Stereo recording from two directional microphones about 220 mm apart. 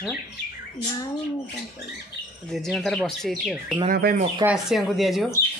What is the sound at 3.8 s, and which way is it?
Speech, 40° right (ahead or behind).